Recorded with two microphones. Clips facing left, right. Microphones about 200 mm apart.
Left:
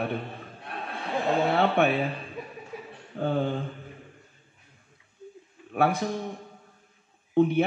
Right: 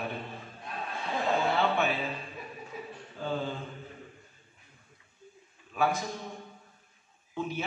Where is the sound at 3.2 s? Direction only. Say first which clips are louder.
Left 7 dB; 60° left (ahead or behind).